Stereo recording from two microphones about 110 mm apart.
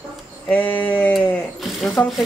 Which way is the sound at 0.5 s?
15° left (ahead or behind).